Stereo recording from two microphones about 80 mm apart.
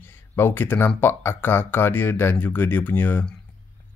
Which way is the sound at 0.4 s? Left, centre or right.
Left.